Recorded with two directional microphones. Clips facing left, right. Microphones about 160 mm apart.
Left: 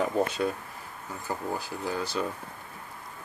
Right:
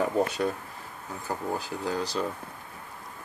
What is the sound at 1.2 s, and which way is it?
Speech, 15° right (ahead or behind).